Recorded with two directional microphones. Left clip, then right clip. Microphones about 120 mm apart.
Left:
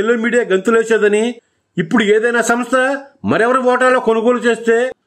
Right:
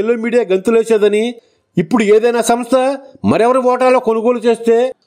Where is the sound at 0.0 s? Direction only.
40° right (ahead or behind).